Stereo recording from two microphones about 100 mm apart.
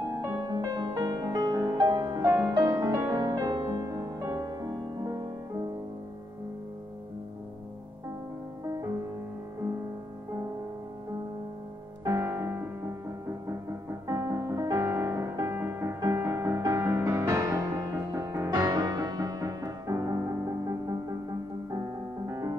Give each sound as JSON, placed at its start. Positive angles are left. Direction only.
{"t": 0.1, "sound": "music", "side_deg": -35}
{"t": 2.2, "sound": "music", "side_deg": -25}
{"t": 2.5, "sound": "music", "side_deg": -45}
{"t": 3.0, "sound": "music", "side_deg": -30}
{"t": 12.0, "sound": "music", "side_deg": -30}
{"t": 14.0, "sound": "music", "side_deg": -35}